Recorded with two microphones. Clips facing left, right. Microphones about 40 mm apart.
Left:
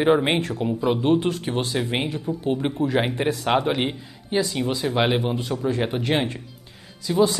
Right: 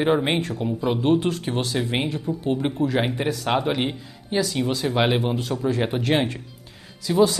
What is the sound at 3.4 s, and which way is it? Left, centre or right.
Speech, centre.